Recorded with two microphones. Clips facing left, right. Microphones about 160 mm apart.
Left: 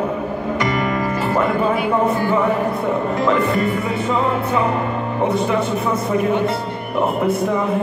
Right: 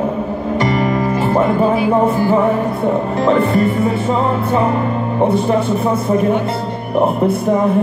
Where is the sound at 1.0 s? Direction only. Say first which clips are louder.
Right 4 dB; 25° right (ahead or behind).